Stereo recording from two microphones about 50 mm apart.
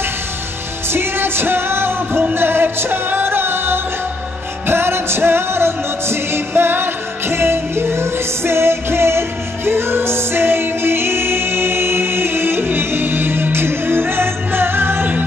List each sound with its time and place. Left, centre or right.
0.8 s music: right